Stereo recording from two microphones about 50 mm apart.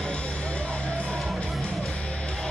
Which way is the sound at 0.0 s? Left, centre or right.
Centre.